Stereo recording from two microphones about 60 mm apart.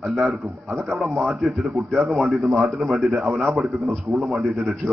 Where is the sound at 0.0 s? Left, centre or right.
Centre.